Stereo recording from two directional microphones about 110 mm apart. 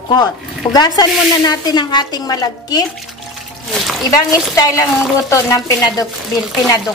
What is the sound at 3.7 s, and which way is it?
Speech, centre (ahead or behind).